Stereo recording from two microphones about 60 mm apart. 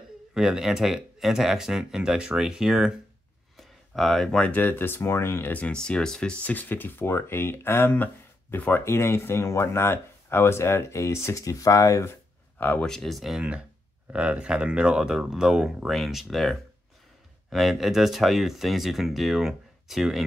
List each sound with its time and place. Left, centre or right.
0.3 s speech: centre
3.5 s a sound: centre
4.6 s speech: left
5.5 s speech: left
5.8 s speech: centre; by 8.8 s left
8.8 s speech: left
12.5 s speech: left
12.8 s speech: centre
13.4 s speech: centre
15.9 s speech: centre